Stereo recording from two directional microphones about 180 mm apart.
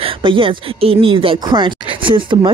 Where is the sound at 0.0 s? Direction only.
30° right (ahead or behind).